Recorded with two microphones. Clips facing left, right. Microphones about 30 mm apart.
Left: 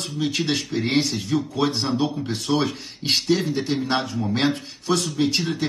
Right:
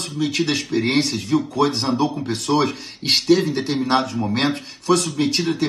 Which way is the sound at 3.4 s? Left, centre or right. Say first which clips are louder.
Right 2 dB; right.